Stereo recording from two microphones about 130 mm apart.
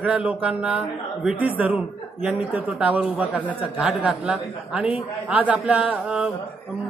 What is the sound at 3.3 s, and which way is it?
Speech, 10° left (ahead or behind).